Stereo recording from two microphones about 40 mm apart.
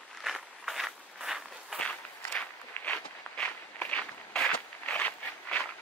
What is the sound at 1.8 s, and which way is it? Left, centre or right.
Walk, left.